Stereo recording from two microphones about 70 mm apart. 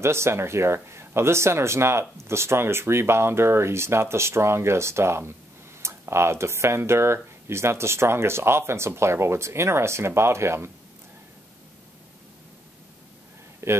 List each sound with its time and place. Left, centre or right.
0.0 s speech: right
13.6 s speech: right